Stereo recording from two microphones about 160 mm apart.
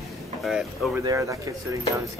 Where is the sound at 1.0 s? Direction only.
20° right (ahead or behind).